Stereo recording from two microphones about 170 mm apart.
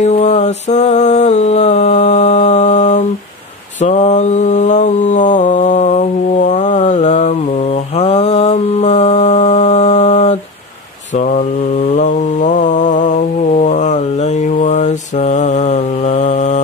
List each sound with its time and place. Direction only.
0.0 s mantra: 40° left (ahead or behind)